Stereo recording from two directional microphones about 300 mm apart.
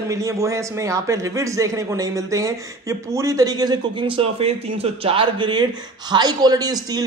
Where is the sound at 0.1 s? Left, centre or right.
Centre.